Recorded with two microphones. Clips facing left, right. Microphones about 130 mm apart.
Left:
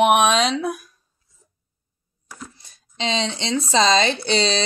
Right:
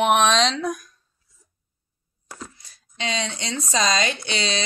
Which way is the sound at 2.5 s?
25° left (ahead or behind).